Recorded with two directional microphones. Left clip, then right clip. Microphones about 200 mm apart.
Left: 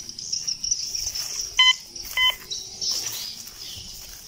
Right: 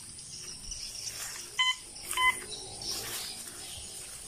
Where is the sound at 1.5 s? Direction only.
50° left (ahead or behind).